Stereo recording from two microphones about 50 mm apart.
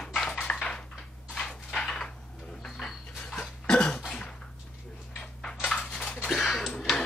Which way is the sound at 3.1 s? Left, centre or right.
Centre.